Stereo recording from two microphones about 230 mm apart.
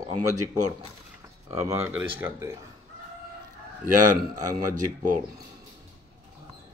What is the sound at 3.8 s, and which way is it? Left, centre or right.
A man's voice, right.